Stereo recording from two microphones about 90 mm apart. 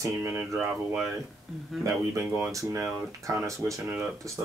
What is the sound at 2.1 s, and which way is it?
Speech, 30° right (ahead or behind).